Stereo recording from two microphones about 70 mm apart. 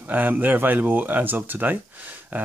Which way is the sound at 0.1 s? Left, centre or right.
Right.